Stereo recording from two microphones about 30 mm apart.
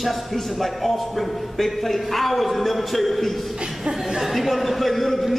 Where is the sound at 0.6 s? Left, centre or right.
Centre.